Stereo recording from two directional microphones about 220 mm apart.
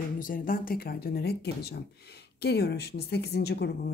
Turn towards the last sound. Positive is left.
turn(degrees=45)  # may be behind; listen again after turning